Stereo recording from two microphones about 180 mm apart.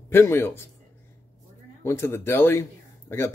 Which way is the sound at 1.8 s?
15° left (ahead or behind).